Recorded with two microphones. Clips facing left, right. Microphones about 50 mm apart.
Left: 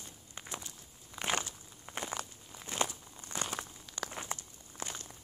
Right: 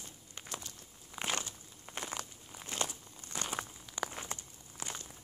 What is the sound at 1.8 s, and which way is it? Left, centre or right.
Walk, centre.